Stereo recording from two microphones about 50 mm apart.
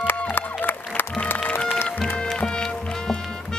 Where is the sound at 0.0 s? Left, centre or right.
Left.